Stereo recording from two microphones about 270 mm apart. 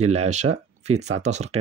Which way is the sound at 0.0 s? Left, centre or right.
Right.